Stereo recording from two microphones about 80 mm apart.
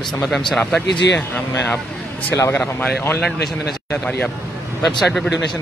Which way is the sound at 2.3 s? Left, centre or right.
Left.